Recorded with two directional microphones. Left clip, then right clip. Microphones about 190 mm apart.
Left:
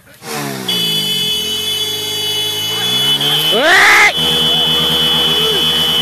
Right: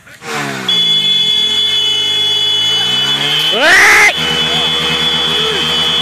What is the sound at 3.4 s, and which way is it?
Music, centre (ahead or behind).